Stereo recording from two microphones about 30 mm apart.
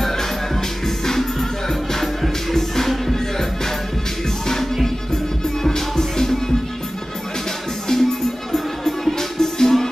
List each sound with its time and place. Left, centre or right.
0.8 s music: centre
2.5 s music: centre
5.6 s music: centre
7.9 s music: centre